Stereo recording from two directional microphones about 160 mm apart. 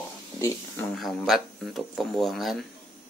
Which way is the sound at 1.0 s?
Centre (ahead or behind).